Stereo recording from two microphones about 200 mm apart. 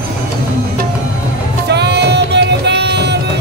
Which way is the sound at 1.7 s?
55° right (ahead or behind).